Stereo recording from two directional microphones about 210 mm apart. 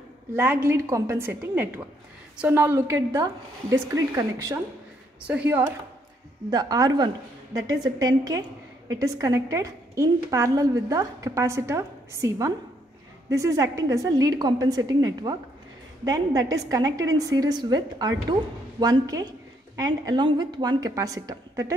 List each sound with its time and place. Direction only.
0.4 s a woman's voice: 10° right (ahead or behind)
6.5 s a woman's voice: 20° right (ahead or behind)